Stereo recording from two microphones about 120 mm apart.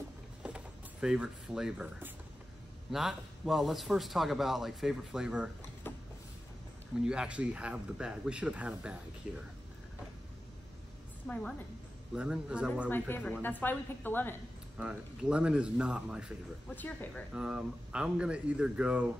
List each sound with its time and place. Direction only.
1.0 s speech: 5° right (ahead or behind)
2.9 s a man's voice: centre (ahead or behind)
5.9 s vehicle: 20° left (ahead or behind)
7.1 s speech: 10° right (ahead or behind)
11.2 s speech: 10° left (ahead or behind)
12.2 s speech: 10° right (ahead or behind)
12.9 s speech: 15° left (ahead or behind)
14.8 s speech: 10° right (ahead or behind)
16.6 s speech: 15° left (ahead or behind)
17.3 s speech: 5° right (ahead or behind)